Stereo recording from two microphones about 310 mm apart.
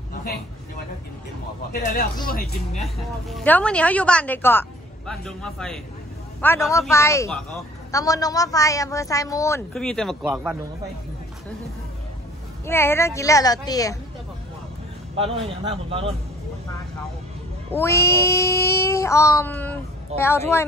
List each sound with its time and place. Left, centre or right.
1.7 s speech: left
2.8 s a woman's voice: centre
12.6 s a man's voice: centre
15.1 s a man's voice: centre
17.6 s a man's voice: centre